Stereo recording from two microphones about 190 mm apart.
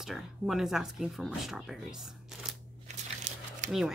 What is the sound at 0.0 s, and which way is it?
Speech, centre (ahead or behind).